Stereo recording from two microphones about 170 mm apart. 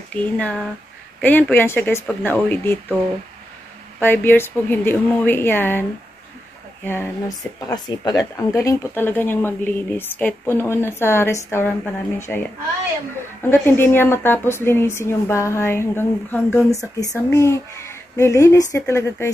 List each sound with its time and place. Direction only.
0.1 s speech: 10° left (ahead or behind)
4.0 s speech: 10° left (ahead or behind)
7.7 s speech: 25° left (ahead or behind)